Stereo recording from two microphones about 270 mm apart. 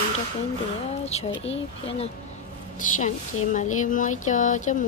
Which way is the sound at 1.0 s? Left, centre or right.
Left.